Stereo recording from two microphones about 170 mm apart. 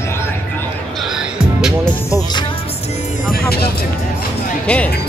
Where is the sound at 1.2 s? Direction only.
5° right (ahead or behind).